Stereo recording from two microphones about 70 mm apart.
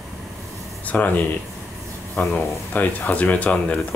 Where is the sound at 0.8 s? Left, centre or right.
Left.